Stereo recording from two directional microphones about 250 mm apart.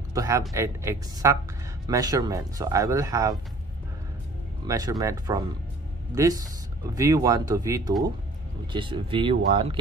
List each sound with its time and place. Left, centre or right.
0.1 s speech: centre
4.6 s speech: centre